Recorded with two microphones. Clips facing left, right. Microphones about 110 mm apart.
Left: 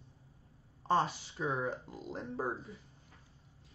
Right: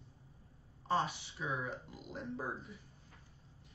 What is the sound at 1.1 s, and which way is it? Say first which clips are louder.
A man's voice: left 4 dB; 40° left (ahead or behind).